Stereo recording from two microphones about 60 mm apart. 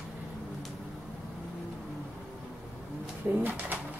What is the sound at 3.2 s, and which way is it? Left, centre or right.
Speech, right.